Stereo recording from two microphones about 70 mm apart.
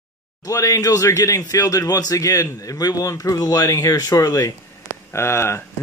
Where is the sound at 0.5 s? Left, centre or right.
Left.